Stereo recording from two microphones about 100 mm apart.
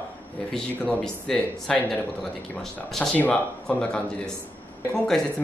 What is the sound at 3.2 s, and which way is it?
Speech, 10° left (ahead or behind).